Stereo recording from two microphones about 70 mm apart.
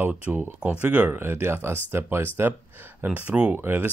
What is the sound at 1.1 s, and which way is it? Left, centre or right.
Speech, right.